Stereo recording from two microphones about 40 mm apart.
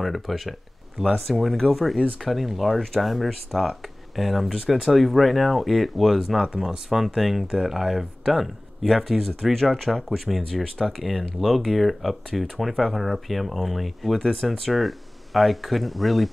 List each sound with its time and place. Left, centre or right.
0.0 s speech: centre
6.5 s speech: right
7.2 s speech: centre
10.6 s speech: centre
11.0 s speech: centre